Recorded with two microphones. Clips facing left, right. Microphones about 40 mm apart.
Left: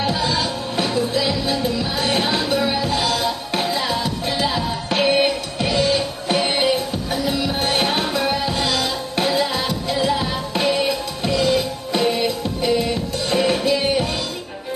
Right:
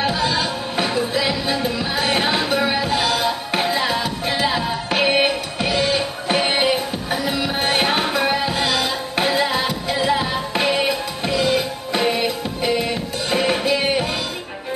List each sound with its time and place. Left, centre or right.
0.0 s music: centre
0.3 s music: centre